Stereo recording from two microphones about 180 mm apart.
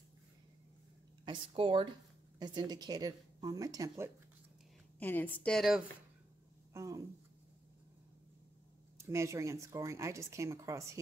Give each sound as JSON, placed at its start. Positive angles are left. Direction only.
{"t": 1.2, "sound": "speech", "side_deg": -25}
{"t": 4.9, "sound": "a woman's voice", "side_deg": 10}
{"t": 6.7, "sound": "a sound", "side_deg": -15}
{"t": 8.9, "sound": "speech", "side_deg": -15}